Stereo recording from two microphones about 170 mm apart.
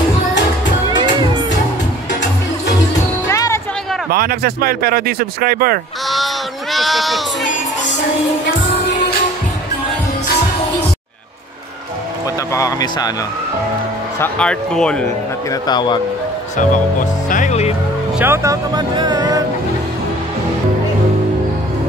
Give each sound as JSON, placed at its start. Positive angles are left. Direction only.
{"t": 3.3, "sound": "music", "side_deg": 20}
{"t": 4.1, "sound": "speech", "side_deg": -65}
{"t": 6.0, "sound": "a sound", "side_deg": 0}
{"t": 12.5, "sound": "speech", "side_deg": 20}
{"t": 14.2, "sound": "speech", "side_deg": 5}
{"t": 15.6, "sound": "speech", "side_deg": 25}
{"t": 17.3, "sound": "speech", "side_deg": 45}
{"t": 18.2, "sound": "speech", "side_deg": -15}